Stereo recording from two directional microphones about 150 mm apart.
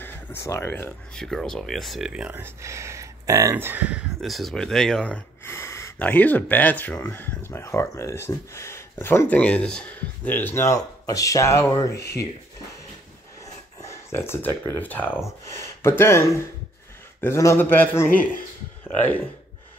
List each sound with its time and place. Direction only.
0.0 s speech: 15° left (ahead or behind)
1.1 s speech: 5° left (ahead or behind)
4.2 s speech: centre (ahead or behind); by 12.3 s 20° left (ahead or behind)
13.7 s speech: 20° left (ahead or behind)